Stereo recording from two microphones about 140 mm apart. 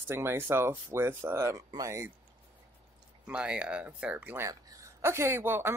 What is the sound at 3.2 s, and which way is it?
Speech, 10° right (ahead or behind).